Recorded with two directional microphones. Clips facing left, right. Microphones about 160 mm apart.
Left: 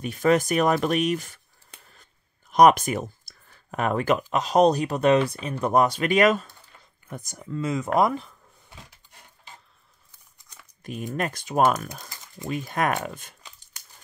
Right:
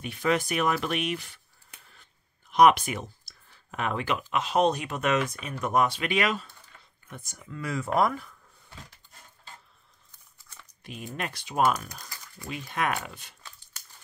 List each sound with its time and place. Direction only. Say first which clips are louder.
0.0 s speech: left 6 dB; 45° left (ahead or behind)
2.5 s speech: left 3 dB; 45° left (ahead or behind)
7.6 s a sound: left 3 dB; 20° left (ahead or behind)
10.3 s crumpling: even; 15° left (ahead or behind)
10.8 s typing: left 7 dB; 45° left (ahead or behind)
11.1 s speech: left 5 dB; 45° left (ahead or behind)
13.4 s crumpling: even; 15° left (ahead or behind)